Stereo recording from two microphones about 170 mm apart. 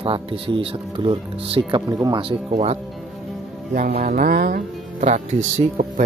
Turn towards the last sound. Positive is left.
turn(degrees=-45)  # may be behind; listen again after turning